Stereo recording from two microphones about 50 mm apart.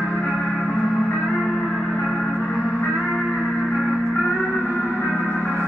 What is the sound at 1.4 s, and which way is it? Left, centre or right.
Music, centre.